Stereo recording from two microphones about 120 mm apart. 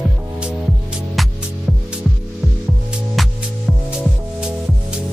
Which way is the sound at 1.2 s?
Centre (ahead or behind).